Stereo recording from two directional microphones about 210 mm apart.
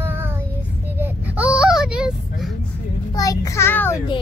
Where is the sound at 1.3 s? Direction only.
5° right (ahead or behind).